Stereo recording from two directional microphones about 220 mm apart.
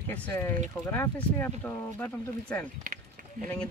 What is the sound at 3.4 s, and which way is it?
Speech, 40° right (ahead or behind).